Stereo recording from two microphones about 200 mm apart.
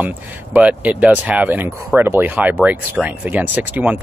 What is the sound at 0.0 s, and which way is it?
Speech, 5° right (ahead or behind).